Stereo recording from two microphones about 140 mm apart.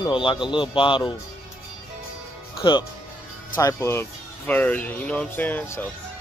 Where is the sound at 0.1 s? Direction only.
35° left (ahead or behind).